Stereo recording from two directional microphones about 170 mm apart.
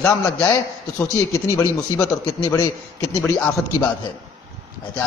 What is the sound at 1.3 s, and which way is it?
A man's voice, 20° left (ahead or behind).